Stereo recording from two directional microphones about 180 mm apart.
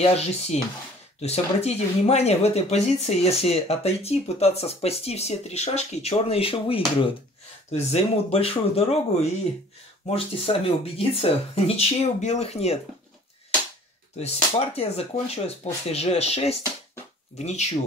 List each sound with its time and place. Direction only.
0.0 s speech: 35° left (ahead or behind)
14.1 s speech: 35° left (ahead or behind)